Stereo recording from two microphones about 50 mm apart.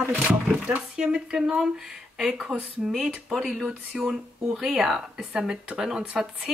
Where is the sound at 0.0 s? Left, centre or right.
Right.